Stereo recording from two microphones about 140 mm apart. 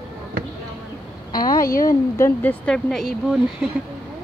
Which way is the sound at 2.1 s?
15° left (ahead or behind).